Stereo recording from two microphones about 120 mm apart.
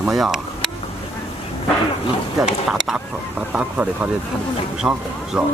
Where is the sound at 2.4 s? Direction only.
5° right (ahead or behind).